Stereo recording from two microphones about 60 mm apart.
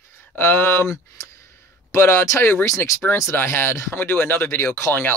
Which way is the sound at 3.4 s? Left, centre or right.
Left.